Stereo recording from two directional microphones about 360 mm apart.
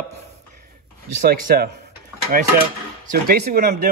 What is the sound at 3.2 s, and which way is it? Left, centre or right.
Speech, right.